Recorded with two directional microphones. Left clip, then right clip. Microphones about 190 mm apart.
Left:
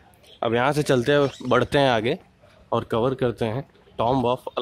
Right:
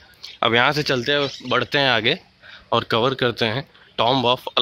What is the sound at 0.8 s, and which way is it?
Speech, 25° left (ahead or behind).